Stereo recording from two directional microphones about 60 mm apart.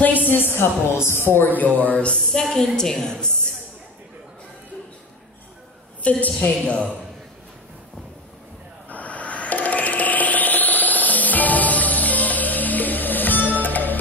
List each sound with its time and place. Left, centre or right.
0.0 s a sound: left
1.2 s a woman's voice: left; by 3.3 s centre
6.0 s a woman's voice: left
8.8 s rub: left